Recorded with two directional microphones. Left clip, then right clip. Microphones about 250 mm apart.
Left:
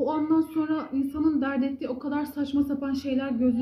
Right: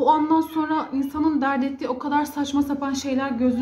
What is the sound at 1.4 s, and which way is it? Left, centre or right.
A woman's voice, centre.